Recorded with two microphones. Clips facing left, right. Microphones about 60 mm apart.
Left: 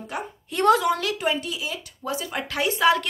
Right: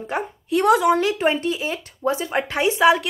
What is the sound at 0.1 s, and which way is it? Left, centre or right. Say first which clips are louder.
Speech: right 6 dB; right.